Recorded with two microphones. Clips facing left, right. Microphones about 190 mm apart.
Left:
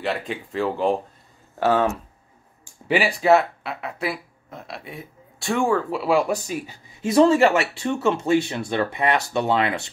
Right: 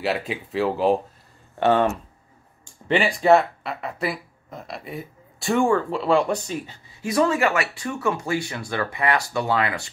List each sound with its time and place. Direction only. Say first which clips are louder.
0.0 s speech: right 1 dB; 5° right (ahead or behind); by 6.8 s 10° left (ahead or behind)
7.0 s speech: left 5 dB; 25° left (ahead or behind)